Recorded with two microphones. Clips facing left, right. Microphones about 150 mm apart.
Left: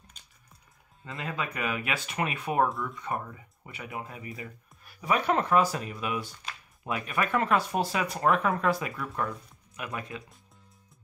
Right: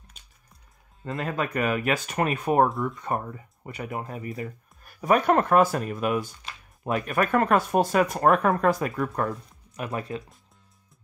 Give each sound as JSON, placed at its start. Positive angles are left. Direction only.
{"t": 1.0, "sound": "speech", "side_deg": -45}
{"t": 9.8, "sound": "speech", "side_deg": -35}